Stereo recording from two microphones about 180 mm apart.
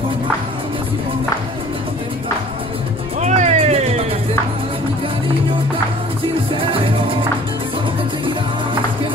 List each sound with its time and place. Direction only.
3.2 s music: 40° right (ahead or behind)
6.5 s music: 30° right (ahead or behind)